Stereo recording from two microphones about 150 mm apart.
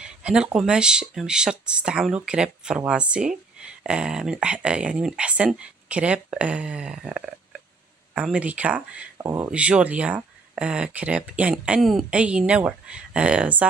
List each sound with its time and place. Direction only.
0.0 s speech: 5° right (ahead or behind)
9.5 s speech: 10° right (ahead or behind)